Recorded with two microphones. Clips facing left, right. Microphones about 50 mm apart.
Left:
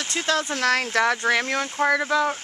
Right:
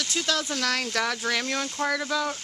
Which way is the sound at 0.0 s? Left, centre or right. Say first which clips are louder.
Left 3 dB; left.